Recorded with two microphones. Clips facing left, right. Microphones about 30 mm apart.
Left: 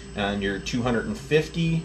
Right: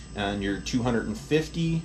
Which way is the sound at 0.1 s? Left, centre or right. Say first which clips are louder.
Left 2 dB; left.